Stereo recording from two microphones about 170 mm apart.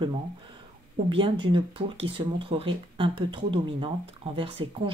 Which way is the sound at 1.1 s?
30° right (ahead or behind).